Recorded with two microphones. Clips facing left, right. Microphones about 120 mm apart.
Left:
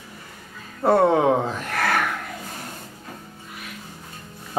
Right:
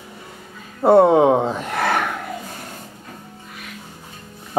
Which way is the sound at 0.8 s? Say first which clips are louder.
Right 5 dB; 20° right (ahead or behind).